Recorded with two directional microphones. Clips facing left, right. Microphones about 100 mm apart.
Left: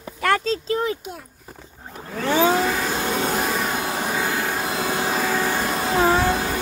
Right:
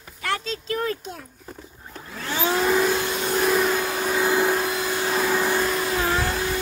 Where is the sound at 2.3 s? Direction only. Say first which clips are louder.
Left 2 dB; 45° left (ahead or behind).